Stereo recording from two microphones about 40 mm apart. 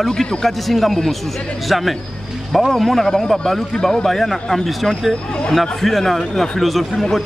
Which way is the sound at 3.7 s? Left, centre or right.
Centre.